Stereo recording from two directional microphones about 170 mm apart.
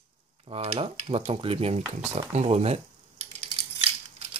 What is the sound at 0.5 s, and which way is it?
Speech, 35° right (ahead or behind).